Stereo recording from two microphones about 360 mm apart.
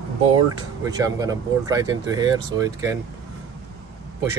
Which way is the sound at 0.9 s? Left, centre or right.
Centre.